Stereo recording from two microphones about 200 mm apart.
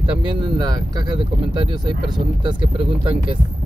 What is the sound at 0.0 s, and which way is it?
Speech, 20° right (ahead or behind).